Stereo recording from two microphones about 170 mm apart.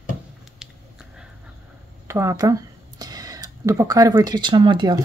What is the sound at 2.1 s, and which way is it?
Speech, 20° right (ahead or behind).